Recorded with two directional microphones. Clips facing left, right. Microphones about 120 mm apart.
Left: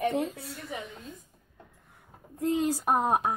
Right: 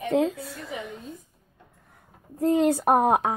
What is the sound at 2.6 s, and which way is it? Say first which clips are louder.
Speech: right 7 dB; 60° right (ahead or behind).